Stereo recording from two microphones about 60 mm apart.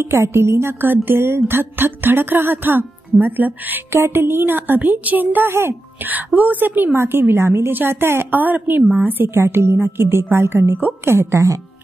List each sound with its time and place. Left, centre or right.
0.0 s speech: right
3.9 s speech: right
6.0 s speech: right
8.4 s a woman's voice: right
9.4 s a woman's voice: right